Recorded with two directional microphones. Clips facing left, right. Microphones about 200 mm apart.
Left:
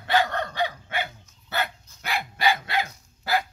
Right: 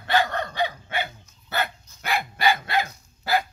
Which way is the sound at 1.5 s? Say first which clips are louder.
Right 1 dB; 50° right (ahead or behind).